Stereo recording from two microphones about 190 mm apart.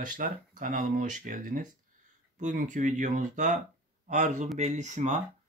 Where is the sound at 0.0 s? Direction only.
45° right (ahead or behind).